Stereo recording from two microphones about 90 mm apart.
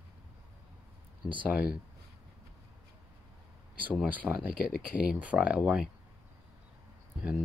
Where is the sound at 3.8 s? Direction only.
15° right (ahead or behind).